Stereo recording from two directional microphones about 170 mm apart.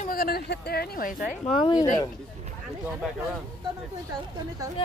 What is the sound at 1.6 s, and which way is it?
Speech, 25° left (ahead or behind).